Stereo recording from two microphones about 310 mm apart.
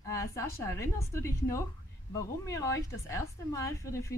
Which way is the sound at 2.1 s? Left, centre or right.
Centre.